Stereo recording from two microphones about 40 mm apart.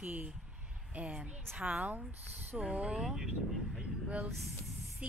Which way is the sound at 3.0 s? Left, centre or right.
Centre.